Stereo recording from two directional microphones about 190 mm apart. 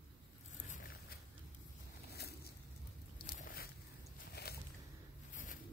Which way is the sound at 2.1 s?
55° left (ahead or behind).